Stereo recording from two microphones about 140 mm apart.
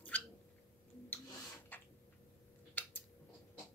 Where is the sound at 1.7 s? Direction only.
10° left (ahead or behind).